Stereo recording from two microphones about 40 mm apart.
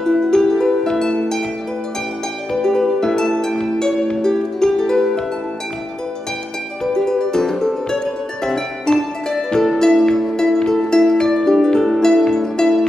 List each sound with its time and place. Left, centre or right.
0.0 s harp: centre
2.5 s harp: centre
6.8 s music: centre
8.5 s harp: centre
9.8 s music: centre